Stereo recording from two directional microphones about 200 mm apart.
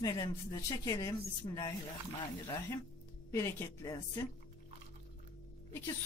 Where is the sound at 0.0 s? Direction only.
20° left (ahead or behind).